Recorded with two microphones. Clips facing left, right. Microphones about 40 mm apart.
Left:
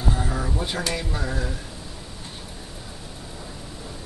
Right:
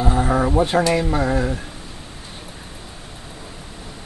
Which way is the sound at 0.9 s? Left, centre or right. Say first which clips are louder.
Right 10 dB; right.